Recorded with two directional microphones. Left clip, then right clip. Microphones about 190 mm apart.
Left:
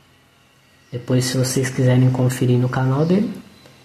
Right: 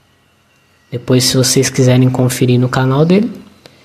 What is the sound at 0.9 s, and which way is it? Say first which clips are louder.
Speech: right 9 dB; 20° right (ahead or behind).